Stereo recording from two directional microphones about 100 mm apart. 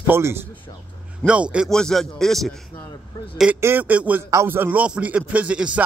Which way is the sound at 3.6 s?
20° right (ahead or behind).